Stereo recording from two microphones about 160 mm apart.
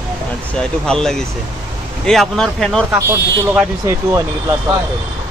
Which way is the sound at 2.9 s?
15° right (ahead or behind).